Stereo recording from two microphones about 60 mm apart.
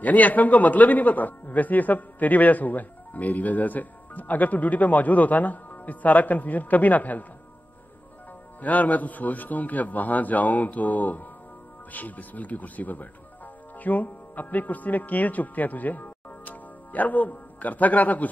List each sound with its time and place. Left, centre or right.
0.0 s a man's voice: left
8.5 s a man's voice: left